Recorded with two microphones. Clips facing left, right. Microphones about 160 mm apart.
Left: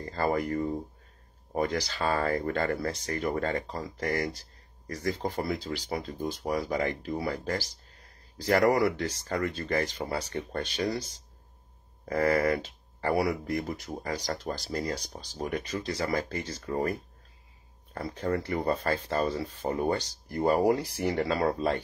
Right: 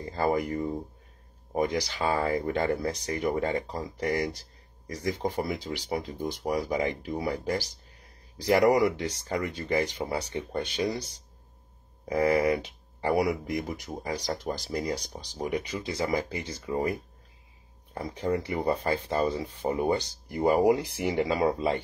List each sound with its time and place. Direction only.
0.0 s speech: 15° right (ahead or behind)
12.1 s speech: 15° right (ahead or behind)
17.9 s speech: 15° right (ahead or behind)